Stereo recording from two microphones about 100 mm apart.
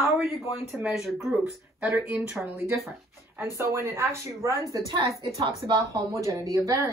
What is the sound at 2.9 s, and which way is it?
Speech, 25° right (ahead or behind).